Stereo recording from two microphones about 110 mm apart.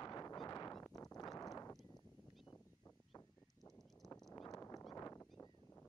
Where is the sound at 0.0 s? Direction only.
35° left (ahead or behind).